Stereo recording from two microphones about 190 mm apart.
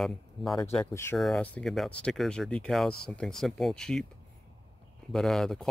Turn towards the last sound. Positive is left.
turn(degrees=0)  # may be behind; listen again after turning